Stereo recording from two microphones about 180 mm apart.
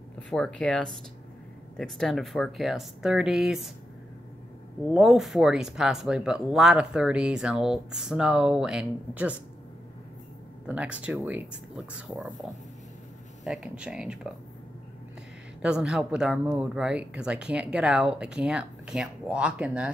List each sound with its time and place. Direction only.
0.3 s speech: 5° left (ahead or behind)
4.8 s speech: centre (ahead or behind)
10.7 s speech: 5° right (ahead or behind)
13.4 s speech: centre (ahead or behind)
15.6 s speech: 5° right (ahead or behind)